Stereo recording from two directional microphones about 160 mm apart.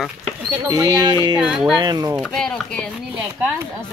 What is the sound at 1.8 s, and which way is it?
Speech, 25° right (ahead or behind).